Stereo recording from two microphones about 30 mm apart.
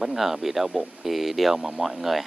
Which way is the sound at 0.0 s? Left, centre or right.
Centre.